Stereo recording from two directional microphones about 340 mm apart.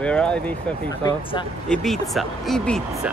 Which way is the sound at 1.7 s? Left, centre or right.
Centre.